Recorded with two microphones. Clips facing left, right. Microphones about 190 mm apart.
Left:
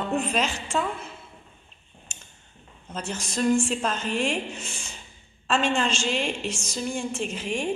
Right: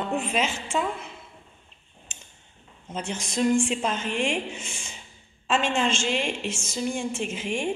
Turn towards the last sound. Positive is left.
turn(degrees=-10)  # may be behind; listen again after turning